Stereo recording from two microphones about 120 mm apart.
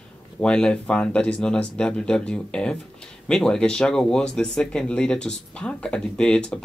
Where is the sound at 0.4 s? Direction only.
10° left (ahead or behind).